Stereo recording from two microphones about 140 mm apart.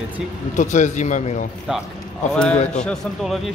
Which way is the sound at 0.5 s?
60° left (ahead or behind).